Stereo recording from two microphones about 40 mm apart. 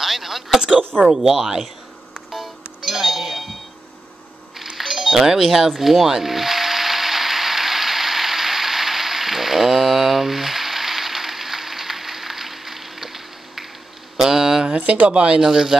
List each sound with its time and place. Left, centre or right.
0.0 s a sound: centre
1.0 s speech: centre
2.3 s music: centre
4.7 s music: centre
14.1 s a sound: centre
14.9 s speech: right
15.4 s speech: centre